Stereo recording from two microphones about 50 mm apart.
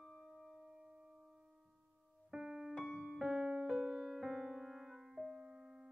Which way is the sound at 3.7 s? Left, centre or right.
Centre.